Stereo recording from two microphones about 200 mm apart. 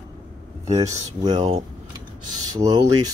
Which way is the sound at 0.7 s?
20° right (ahead or behind).